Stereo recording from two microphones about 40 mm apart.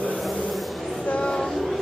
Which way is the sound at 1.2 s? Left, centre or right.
Centre.